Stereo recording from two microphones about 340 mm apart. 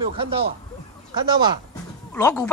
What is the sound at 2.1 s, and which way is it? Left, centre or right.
Speech, centre.